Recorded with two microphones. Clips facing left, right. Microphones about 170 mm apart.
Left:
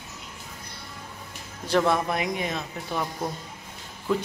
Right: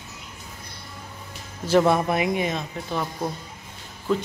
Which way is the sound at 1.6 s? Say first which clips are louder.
Right 4 dB; 5° right (ahead or behind).